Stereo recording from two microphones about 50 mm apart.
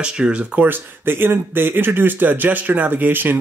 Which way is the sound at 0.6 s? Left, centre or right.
Right.